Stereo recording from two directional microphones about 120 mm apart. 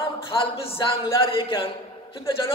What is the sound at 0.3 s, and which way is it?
A man's voice, 50° left (ahead or behind).